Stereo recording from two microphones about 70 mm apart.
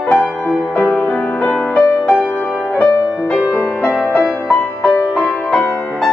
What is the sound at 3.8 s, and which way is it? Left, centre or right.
Music, left.